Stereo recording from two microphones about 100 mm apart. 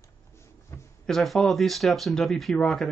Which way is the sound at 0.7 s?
25° left (ahead or behind).